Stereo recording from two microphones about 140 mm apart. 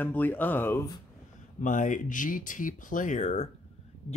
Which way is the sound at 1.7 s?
65° left (ahead or behind).